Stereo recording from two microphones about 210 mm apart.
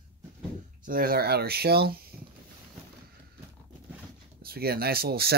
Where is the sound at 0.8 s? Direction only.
45° right (ahead or behind).